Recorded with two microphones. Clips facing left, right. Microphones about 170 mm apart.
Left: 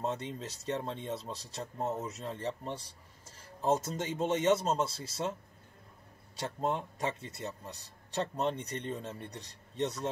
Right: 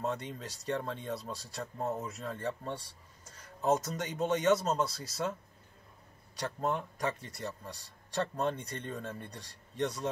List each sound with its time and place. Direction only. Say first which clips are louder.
0.0 s a man's voice: even; 25° left (ahead or behind)
6.3 s a man's voice: even; 25° left (ahead or behind)